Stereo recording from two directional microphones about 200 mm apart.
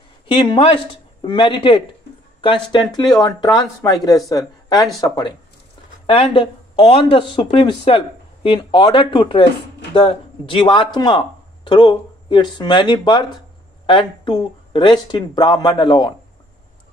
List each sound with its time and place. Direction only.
0.3 s speech: 25° left (ahead or behind)